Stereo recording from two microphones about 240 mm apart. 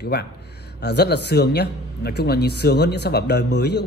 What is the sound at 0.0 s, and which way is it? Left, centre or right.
A man's voice, left.